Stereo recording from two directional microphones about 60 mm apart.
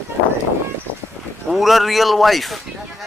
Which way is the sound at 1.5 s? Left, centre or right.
Centre.